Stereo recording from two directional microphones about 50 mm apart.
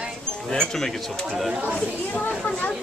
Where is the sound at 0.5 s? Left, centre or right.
Centre.